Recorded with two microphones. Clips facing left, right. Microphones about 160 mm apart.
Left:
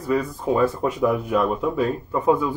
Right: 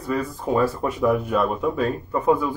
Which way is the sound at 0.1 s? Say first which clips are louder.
Left 2 dB; centre (ahead or behind).